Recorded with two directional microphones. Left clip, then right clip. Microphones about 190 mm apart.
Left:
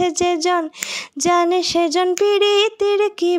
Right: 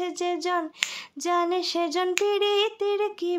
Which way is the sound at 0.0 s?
40° left (ahead or behind).